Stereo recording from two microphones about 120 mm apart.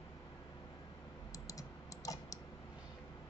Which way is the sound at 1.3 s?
30° left (ahead or behind).